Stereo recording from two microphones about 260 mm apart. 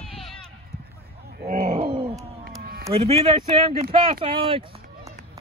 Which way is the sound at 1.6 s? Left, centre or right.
Right.